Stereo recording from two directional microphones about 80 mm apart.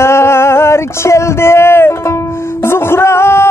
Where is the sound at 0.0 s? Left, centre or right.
Left.